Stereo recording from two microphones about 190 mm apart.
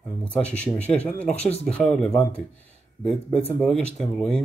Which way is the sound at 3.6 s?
Centre (ahead or behind).